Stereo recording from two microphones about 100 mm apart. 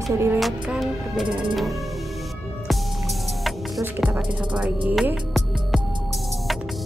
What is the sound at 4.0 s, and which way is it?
Music, 10° right (ahead or behind).